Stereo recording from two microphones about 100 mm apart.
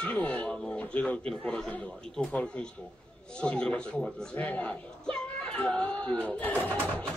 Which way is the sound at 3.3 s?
10° left (ahead or behind).